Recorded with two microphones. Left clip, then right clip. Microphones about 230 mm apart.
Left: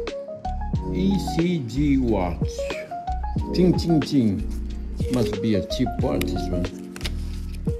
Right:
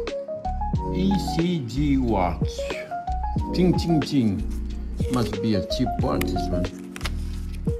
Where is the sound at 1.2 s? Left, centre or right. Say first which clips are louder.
Left 1 dB; centre.